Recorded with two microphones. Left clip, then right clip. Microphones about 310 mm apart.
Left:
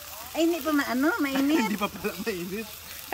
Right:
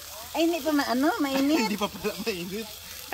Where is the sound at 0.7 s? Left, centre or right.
Centre.